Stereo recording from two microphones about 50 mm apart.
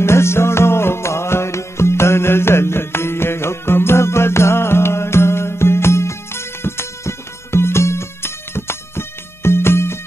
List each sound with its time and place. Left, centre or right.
0.0 s music: left